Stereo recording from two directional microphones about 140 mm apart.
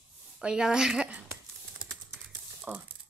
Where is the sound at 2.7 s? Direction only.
10° right (ahead or behind).